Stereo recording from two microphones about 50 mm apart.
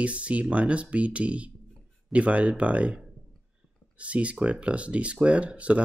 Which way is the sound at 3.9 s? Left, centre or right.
Right.